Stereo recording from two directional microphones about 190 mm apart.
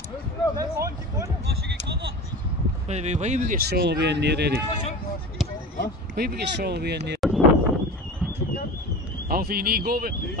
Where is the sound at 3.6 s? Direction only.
55° right (ahead or behind).